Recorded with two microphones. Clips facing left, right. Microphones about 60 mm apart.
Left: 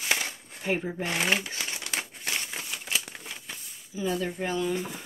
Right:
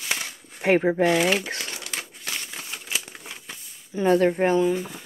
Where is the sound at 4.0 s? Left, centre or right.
Right.